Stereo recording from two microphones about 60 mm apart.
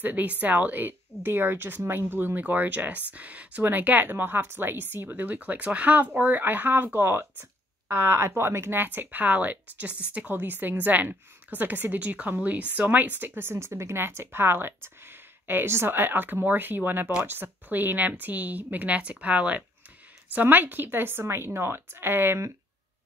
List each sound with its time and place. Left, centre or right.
0.0 s a woman's voice: right